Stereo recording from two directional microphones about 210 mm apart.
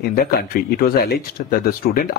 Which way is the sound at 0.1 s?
45° left (ahead or behind).